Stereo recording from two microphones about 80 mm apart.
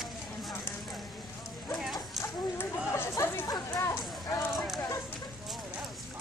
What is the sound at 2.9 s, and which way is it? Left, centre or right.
Chatter, left.